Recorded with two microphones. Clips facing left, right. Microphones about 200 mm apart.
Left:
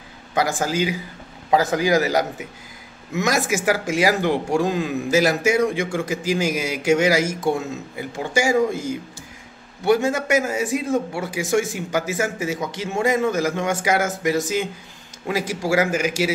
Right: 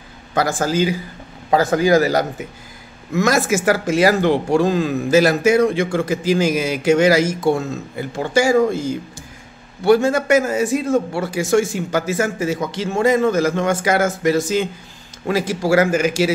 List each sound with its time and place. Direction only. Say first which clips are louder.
0.3 s a man's voice: right 3 dB; 15° left (ahead or behind)